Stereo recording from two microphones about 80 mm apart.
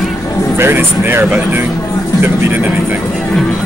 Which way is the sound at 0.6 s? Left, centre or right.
Right.